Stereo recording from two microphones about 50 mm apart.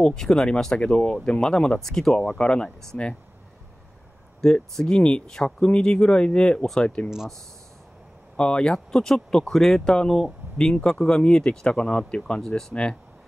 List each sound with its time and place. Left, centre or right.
0.0 s speech: centre
2.1 s speech: left
4.4 s speech: centre
8.4 s speech: centre